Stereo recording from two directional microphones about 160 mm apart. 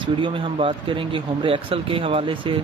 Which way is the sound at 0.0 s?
30° right (ahead or behind).